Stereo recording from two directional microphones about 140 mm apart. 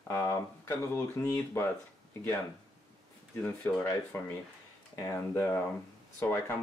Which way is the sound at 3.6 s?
10° left (ahead or behind).